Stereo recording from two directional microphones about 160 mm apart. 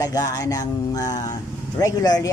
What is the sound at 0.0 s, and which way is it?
Speech, 20° left (ahead or behind).